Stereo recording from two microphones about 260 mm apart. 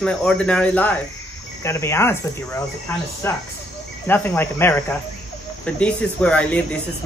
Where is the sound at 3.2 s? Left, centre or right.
Centre.